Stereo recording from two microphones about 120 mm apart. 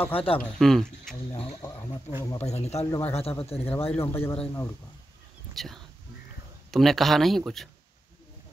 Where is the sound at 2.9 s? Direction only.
20° left (ahead or behind).